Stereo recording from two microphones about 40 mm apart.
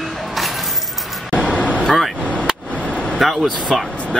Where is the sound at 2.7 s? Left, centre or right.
Left.